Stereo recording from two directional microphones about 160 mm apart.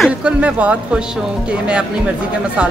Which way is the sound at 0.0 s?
5° right (ahead or behind).